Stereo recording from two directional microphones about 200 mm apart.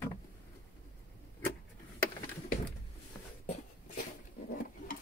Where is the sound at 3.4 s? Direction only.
40° left (ahead or behind).